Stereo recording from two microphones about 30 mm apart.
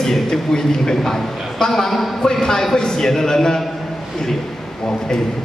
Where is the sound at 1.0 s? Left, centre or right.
Centre.